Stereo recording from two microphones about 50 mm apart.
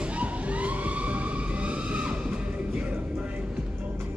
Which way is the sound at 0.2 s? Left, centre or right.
Right.